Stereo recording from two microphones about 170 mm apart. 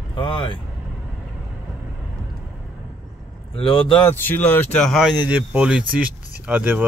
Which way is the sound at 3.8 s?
30° left (ahead or behind).